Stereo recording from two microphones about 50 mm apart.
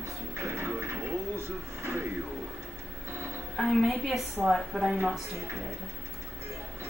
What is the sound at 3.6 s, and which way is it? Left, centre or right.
A woman's voice, centre.